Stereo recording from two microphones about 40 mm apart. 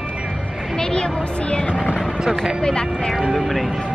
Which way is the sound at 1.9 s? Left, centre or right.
Centre.